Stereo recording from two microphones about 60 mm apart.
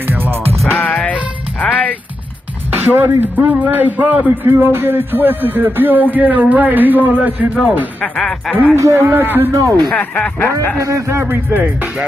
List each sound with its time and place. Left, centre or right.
0.0 s music: right
0.7 s music: left
2.7 s a man's voice: right
8.0 s speech: centre
8.7 s a man's voice: right
9.1 s a man's voice: right
9.5 s a man's voice: right
9.9 s speech: centre
10.8 s speech: right